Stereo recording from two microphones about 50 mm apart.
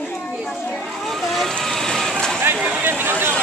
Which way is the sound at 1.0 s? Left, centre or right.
Centre.